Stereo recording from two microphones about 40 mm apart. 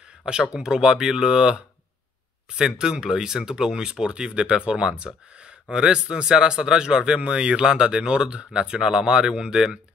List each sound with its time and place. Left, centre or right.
0.2 s speech: right